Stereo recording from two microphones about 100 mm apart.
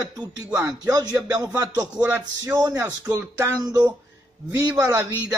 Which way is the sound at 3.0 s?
25° right (ahead or behind).